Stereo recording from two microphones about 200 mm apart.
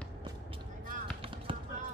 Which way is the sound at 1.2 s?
25° right (ahead or behind).